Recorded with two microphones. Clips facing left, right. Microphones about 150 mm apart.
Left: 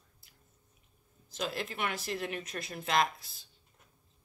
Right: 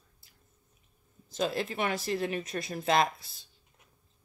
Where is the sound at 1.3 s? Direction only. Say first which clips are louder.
Right 6 dB; 30° right (ahead or behind).